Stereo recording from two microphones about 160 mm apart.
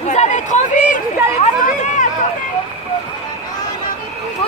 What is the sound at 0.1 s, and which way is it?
Chatter, 50° left (ahead or behind).